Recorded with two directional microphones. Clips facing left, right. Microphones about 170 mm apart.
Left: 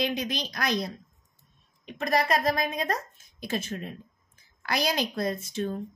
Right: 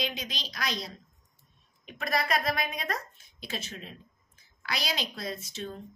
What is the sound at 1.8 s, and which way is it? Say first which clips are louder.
A woman's voice: left 5 dB; 35° left (ahead or behind).